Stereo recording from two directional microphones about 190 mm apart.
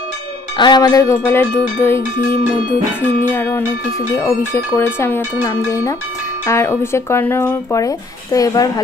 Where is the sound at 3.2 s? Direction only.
10° left (ahead or behind).